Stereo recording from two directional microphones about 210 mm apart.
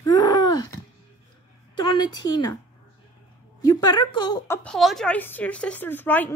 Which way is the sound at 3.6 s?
20° left (ahead or behind).